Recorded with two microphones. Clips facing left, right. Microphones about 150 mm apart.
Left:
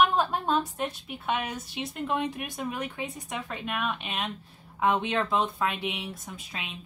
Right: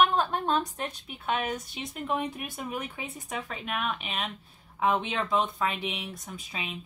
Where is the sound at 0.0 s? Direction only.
5° left (ahead or behind).